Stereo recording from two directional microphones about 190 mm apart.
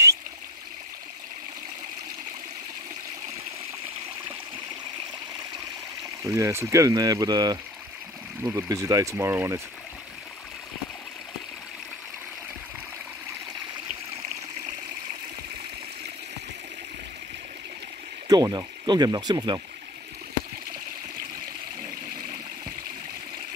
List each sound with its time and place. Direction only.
6.2 s speech: 15° right (ahead or behind)
18.3 s speech: 20° right (ahead or behind)